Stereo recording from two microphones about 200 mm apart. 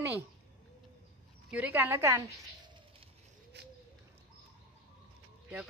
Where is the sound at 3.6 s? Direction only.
55° right (ahead or behind).